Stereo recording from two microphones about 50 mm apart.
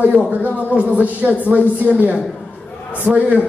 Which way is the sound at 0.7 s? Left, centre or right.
Right.